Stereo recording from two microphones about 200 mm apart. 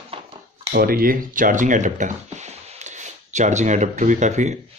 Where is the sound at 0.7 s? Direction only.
50° right (ahead or behind).